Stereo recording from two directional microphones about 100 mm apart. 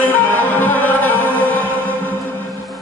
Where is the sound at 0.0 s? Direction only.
20° left (ahead or behind).